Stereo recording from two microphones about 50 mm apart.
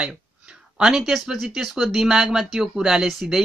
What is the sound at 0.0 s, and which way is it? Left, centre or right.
Speech, centre.